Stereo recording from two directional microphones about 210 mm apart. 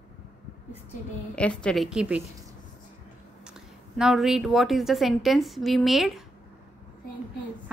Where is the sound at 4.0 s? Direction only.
Centre (ahead or behind).